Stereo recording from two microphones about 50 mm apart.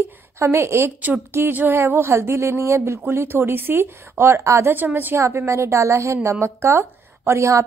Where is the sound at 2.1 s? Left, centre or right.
Right.